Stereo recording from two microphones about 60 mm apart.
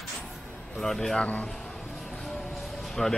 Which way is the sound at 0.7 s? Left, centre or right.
Centre.